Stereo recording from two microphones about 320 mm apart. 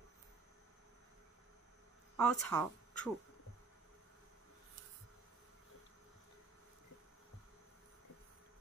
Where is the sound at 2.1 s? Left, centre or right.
Centre.